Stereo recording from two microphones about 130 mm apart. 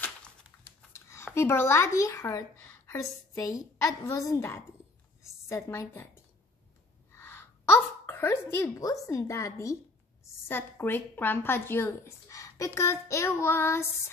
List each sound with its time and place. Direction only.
0.9 s a woman's voice: 20° left (ahead or behind)